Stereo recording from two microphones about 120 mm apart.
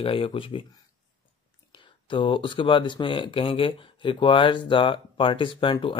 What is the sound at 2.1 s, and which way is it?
Speech, 45° left (ahead or behind).